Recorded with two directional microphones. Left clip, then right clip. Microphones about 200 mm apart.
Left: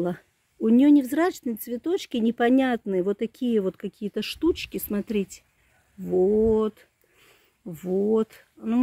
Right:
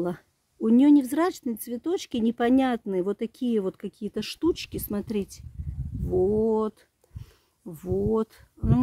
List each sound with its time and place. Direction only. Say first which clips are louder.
0.0 s speech: left 2 dB; centre (ahead or behind)